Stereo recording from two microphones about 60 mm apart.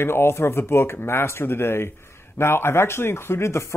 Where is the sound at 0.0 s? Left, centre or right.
Left.